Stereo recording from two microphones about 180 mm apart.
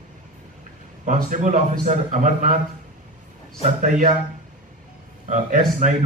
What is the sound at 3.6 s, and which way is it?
Speech, 45° right (ahead or behind).